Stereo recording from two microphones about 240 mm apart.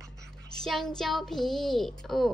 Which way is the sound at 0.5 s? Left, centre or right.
Centre.